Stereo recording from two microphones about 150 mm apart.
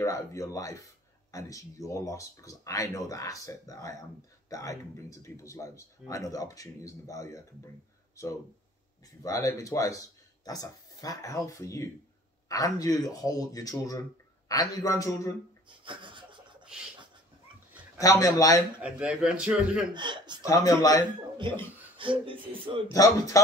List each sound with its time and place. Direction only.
0.0 s speech: 20° left (ahead or behind)
9.2 s speech: 20° left (ahead or behind)
15.8 s laughter: 35° right (ahead or behind)
17.9 s speech: 20° left (ahead or behind)
18.8 s a man's voice: 10° right (ahead or behind)
19.9 s speech: 30° right (ahead or behind)
20.4 s speech: 20° left (ahead or behind)
21.9 s speech: 35° right (ahead or behind)
22.8 s speech: 20° left (ahead or behind)